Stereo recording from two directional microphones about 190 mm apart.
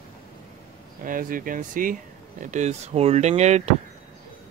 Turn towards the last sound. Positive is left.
turn(degrees=-35)  # may be behind; listen again after turning